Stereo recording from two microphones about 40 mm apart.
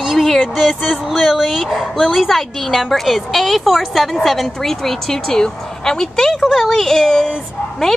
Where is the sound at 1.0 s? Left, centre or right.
Centre.